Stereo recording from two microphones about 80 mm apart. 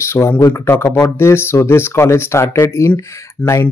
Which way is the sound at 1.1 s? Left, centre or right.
Left.